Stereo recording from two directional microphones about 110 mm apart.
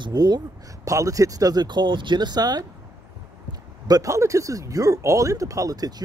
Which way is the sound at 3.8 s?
30° right (ahead or behind).